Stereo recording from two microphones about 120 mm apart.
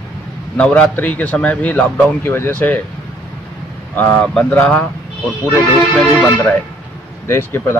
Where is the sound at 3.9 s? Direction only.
15° left (ahead or behind).